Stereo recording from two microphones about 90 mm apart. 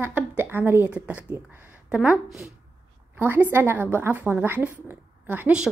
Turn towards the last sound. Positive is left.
turn(degrees=-20)  # may be behind; listen again after turning